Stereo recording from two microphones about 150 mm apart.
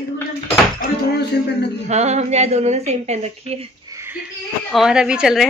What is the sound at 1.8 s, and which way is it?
A woman's voice, 50° right (ahead or behind).